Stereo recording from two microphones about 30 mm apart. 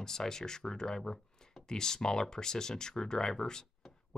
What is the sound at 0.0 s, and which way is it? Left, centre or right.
Speech, centre.